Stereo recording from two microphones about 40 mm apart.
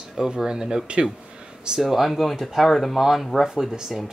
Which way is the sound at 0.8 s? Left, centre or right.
Right.